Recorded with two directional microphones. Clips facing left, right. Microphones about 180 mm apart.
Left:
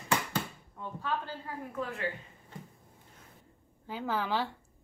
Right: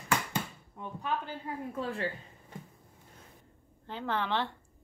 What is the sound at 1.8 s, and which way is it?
Speech, 35° right (ahead or behind).